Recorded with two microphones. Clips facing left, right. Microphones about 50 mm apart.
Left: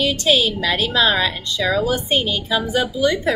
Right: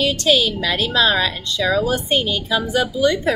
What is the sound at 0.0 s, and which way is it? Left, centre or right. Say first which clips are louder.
A woman's voice: even; centre.